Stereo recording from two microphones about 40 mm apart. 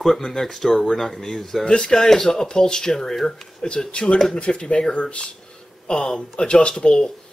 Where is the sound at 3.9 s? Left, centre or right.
Left.